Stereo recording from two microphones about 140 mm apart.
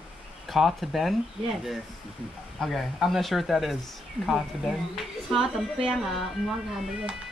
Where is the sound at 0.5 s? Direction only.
Centre (ahead or behind).